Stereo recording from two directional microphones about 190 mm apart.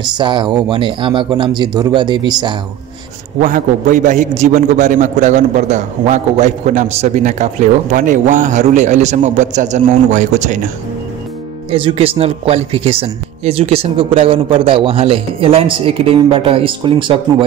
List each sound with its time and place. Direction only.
0.2 s speech: 25° right (ahead or behind)
3.3 s a man's voice: 45° right (ahead or behind)
11.7 s speech: 30° right (ahead or behind)